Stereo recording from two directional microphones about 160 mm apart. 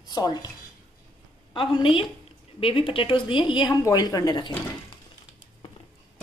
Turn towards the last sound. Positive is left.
turn(degrees=25)  # may be behind; listen again after turning